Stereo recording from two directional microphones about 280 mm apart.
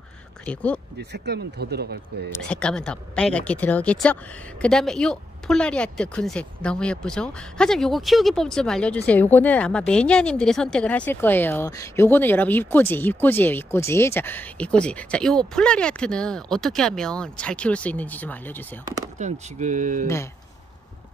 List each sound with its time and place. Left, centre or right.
0.5 s speech: centre
0.9 s speech: right
2.5 s speech: centre
19.1 s speech: right